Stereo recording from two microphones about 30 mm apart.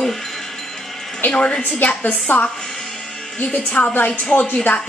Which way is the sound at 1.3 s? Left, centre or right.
Left.